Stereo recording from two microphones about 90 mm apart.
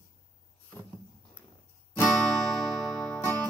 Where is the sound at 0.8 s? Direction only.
25° left (ahead or behind).